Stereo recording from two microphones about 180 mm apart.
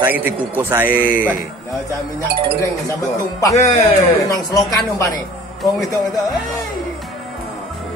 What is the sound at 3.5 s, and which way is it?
Speech, 40° left (ahead or behind).